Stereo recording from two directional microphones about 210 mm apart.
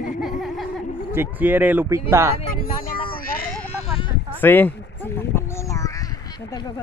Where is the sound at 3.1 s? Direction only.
45° left (ahead or behind).